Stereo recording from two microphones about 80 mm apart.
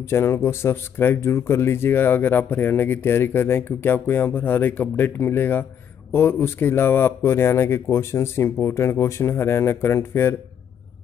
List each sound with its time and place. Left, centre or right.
0.0 s speech: left